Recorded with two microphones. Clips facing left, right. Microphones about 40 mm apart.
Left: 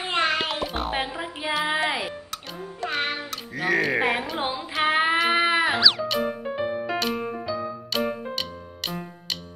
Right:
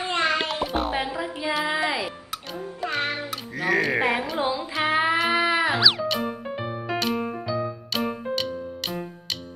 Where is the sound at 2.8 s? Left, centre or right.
Centre.